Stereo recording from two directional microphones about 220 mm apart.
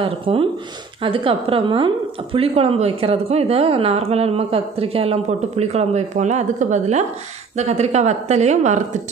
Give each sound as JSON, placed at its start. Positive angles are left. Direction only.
{"t": 0.0, "sound": "speech", "side_deg": -25}